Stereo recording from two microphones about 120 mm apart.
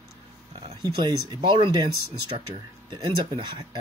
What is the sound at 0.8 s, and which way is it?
Speech, 35° right (ahead or behind).